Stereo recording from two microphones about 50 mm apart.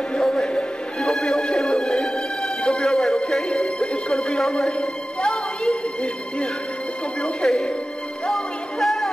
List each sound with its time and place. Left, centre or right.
0.1 s music: centre
4.1 s a sound: centre
7.2 s music: centre